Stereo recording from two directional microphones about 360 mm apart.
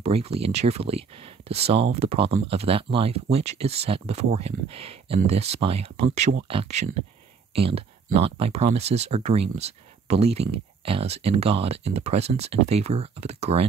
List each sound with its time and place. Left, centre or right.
0.0 s speech: centre